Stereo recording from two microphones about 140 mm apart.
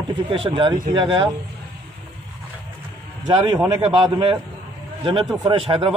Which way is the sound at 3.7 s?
30° right (ahead or behind).